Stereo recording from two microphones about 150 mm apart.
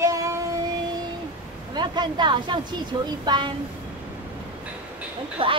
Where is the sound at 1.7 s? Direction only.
30° right (ahead or behind).